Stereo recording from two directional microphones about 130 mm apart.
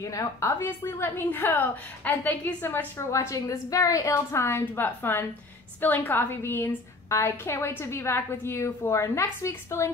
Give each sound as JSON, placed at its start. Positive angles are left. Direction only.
{"t": 0.0, "sound": "a woman's voice", "side_deg": 25}